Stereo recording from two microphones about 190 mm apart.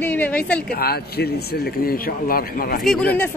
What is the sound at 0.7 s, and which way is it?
A man's voice, 55° left (ahead or behind).